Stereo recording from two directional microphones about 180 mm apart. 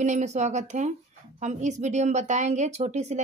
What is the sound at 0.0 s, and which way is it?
Speech, 40° right (ahead or behind).